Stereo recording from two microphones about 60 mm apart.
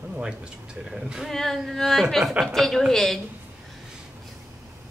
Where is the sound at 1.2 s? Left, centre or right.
Centre.